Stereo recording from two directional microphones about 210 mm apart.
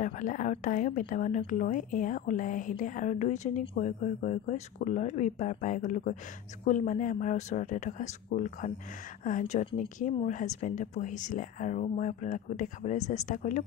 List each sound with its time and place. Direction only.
0.0 s speech: 40° left (ahead or behind)